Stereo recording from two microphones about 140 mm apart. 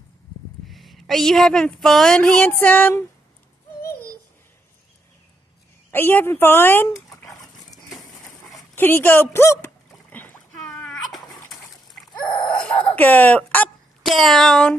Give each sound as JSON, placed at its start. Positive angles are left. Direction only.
{"t": 0.7, "sound": "a woman's voice", "side_deg": 0}
{"t": 5.9, "sound": "dog", "side_deg": 15}
{"t": 8.7, "sound": "speech", "side_deg": 15}
{"t": 9.8, "sound": "splash", "side_deg": 10}
{"t": 12.4, "sound": "speech", "side_deg": 10}
{"t": 14.0, "sound": "a woman's voice", "side_deg": 0}